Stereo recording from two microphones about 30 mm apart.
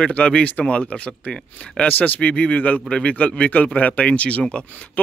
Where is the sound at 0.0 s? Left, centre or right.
Left.